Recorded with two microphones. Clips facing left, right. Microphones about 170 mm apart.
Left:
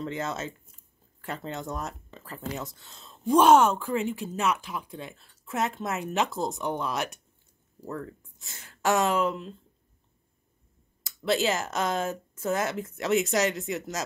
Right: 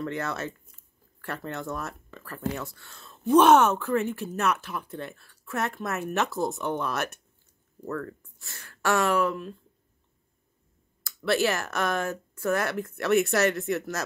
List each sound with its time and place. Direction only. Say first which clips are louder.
0.0 s speech: right 1 dB; 20° left (ahead or behind)
11.2 s speech: right 1 dB; 20° left (ahead or behind)